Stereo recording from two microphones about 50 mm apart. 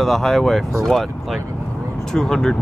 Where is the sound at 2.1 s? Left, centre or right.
Centre.